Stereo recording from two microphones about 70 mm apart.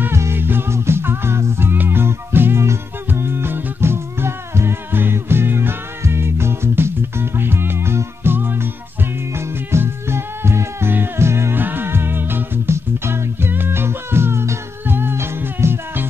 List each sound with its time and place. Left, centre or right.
0.1 s music: right